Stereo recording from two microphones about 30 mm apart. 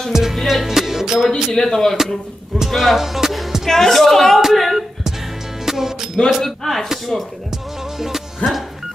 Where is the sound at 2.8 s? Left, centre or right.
Centre.